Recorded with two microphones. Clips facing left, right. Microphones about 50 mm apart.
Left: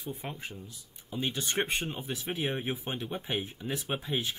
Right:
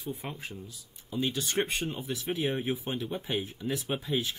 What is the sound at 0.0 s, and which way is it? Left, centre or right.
Speech, centre.